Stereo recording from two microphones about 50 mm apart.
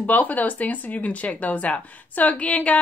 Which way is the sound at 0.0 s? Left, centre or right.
Left.